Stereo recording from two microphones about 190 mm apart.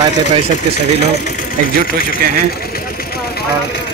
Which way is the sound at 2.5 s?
55° left (ahead or behind).